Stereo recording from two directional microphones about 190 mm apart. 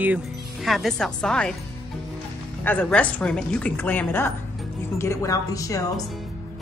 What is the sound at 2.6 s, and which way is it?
Speech, 10° left (ahead or behind).